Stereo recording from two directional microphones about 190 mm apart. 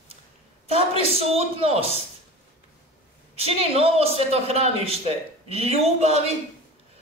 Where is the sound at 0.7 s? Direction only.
30° right (ahead or behind).